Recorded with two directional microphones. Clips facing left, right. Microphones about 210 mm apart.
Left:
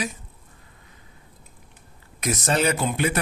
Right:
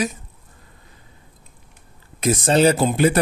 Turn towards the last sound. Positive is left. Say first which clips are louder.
# right 7 dB
turn(degrees=-35)  # may be behind; listen again after turning